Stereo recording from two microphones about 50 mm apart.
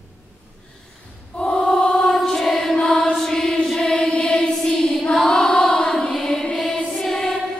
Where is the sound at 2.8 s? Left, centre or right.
Centre.